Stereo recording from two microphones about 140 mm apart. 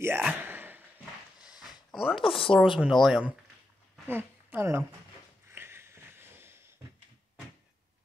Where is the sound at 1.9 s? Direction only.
5° right (ahead or behind).